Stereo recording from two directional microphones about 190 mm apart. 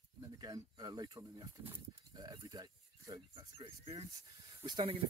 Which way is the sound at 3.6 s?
30° right (ahead or behind).